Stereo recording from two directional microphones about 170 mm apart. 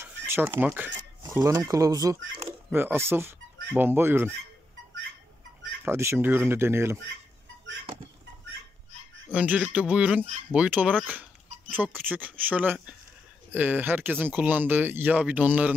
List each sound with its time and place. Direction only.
0.3 s speech: 15° right (ahead or behind)
5.9 s speech: 15° right (ahead or behind)
9.3 s speech: 10° right (ahead or behind)